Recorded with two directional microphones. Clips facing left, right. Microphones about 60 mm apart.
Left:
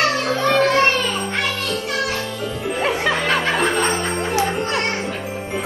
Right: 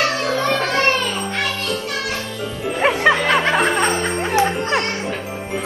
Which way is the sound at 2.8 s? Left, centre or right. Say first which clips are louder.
Right 5 dB; right.